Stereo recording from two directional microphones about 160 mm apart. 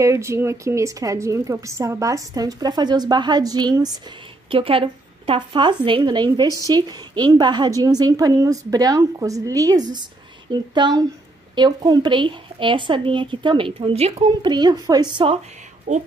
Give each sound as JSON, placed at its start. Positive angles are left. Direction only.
{"t": 0.0, "sound": "a woman's voice", "side_deg": -20}
{"t": 4.5, "sound": "a woman's voice", "side_deg": -35}
{"t": 14.5, "sound": "a woman's voice", "side_deg": -25}
{"t": 15.9, "sound": "speech", "side_deg": -50}